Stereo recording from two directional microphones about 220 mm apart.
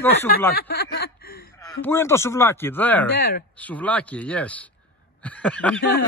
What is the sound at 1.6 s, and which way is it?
Speech, 10° left (ahead or behind).